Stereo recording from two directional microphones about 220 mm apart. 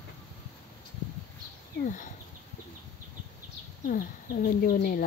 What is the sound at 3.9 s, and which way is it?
Speech, 40° left (ahead or behind).